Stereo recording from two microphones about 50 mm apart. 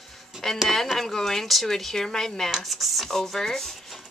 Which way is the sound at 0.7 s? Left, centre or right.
Centre.